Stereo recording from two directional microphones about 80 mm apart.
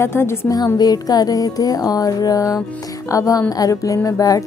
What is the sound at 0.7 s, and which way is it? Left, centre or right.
Speech, left.